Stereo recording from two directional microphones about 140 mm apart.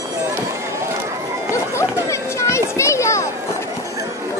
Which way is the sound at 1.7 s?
20° left (ahead or behind).